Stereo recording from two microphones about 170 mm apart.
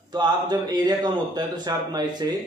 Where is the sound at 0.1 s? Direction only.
25° right (ahead or behind).